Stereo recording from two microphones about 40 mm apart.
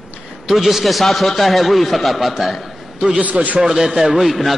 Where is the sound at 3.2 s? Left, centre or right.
Right.